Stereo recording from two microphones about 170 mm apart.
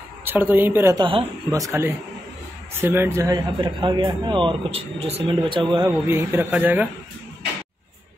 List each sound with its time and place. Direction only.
0.2 s speech: 10° right (ahead or behind)
0.9 s speech: 25° right (ahead or behind)
1.6 s speech: 15° right (ahead or behind); by 5.6 s 30° right (ahead or behind)
5.8 s speech: 15° right (ahead or behind)